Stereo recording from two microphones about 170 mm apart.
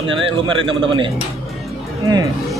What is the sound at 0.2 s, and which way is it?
Speech, 30° right (ahead or behind).